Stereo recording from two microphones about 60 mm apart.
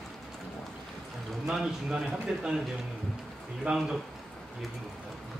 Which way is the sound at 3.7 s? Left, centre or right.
Centre.